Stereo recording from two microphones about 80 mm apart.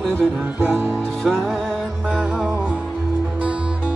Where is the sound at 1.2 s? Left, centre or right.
Centre.